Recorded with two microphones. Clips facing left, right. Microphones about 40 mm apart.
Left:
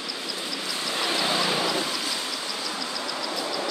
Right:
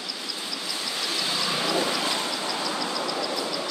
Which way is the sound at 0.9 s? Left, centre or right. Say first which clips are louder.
Left 4 dB; left.